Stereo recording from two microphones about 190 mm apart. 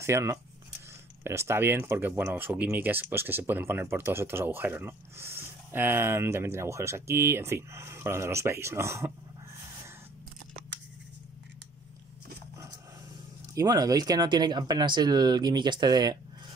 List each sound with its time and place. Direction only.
0.0 s speech: 15° right (ahead or behind)
13.6 s speech: 20° right (ahead or behind)